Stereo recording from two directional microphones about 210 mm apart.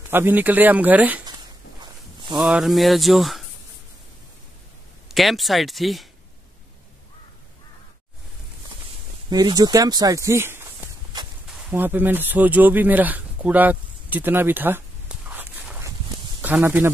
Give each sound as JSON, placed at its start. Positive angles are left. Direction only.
{"t": 0.1, "sound": "speech", "side_deg": -10}
{"t": 1.8, "sound": "a sound", "side_deg": -20}
{"t": 2.4, "sound": "speech", "side_deg": 0}
{"t": 5.0, "sound": "speech", "side_deg": 0}
{"t": 9.3, "sound": "speech", "side_deg": -20}